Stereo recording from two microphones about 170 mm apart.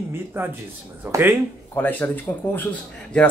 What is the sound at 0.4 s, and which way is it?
Speech, 10° right (ahead or behind).